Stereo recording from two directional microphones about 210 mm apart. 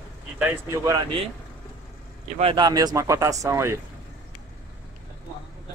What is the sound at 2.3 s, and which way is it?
Speech, 25° right (ahead or behind).